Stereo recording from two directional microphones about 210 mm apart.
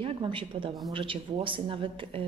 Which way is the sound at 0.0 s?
25° right (ahead or behind).